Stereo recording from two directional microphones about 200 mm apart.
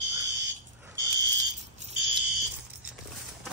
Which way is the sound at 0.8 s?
15° right (ahead or behind).